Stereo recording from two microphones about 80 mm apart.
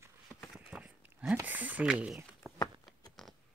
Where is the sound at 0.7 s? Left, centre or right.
Centre.